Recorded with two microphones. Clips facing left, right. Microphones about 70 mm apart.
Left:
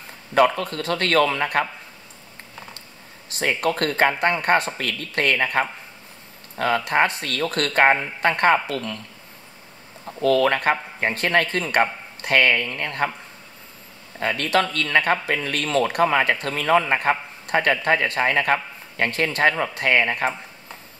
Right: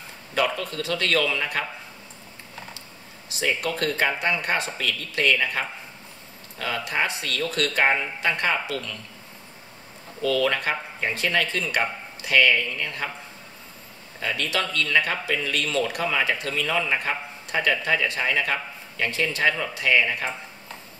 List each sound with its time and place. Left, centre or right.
0.3 s speech: left
3.3 s speech: left
10.2 s speech: left
14.2 s speech: left